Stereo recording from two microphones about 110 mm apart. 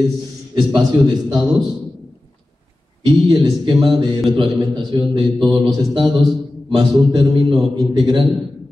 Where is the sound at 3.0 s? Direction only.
45° right (ahead or behind).